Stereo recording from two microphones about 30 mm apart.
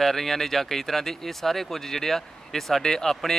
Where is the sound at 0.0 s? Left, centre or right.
Centre.